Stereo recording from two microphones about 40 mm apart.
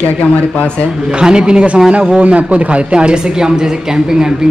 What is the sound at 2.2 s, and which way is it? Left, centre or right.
A man's voice, right.